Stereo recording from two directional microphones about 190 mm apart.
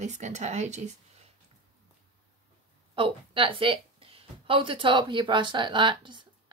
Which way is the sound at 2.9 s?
25° right (ahead or behind).